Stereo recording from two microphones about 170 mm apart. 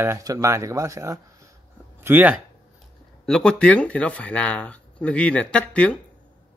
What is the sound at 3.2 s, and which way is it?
Speech, 5° left (ahead or behind).